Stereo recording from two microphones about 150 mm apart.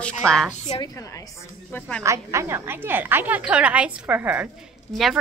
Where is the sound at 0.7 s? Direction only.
25° left (ahead or behind).